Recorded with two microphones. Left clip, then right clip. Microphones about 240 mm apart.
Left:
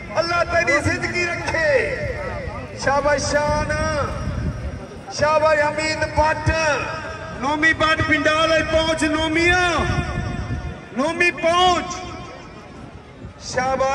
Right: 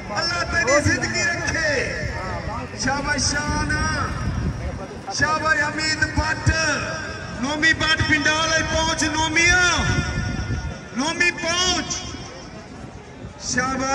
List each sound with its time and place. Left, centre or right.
0.1 s a sound: centre
2.9 s a man's voice: centre
5.1 s a man's voice: centre